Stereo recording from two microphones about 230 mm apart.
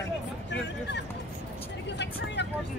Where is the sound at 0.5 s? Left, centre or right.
Left.